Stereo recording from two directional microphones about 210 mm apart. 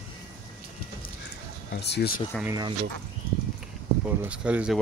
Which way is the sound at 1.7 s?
50° left (ahead or behind).